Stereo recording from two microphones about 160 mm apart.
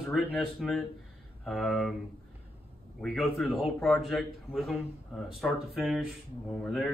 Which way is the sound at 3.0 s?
Centre (ahead or behind).